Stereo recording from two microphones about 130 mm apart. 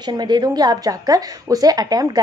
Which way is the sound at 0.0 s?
35° right (ahead or behind).